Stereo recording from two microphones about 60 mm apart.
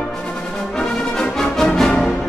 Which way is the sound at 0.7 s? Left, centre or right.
Centre.